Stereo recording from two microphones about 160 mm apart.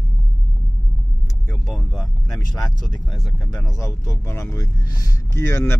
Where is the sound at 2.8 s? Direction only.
25° left (ahead or behind).